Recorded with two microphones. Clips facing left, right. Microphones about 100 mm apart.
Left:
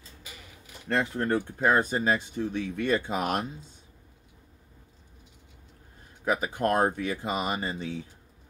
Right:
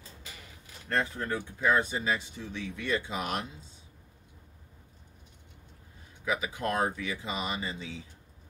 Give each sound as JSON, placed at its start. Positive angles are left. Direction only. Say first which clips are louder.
{"t": 0.8, "sound": "speech", "louder": "left 4 dB", "side_deg": 80}
{"t": 6.2, "sound": "speech", "louder": "left 5 dB", "side_deg": 45}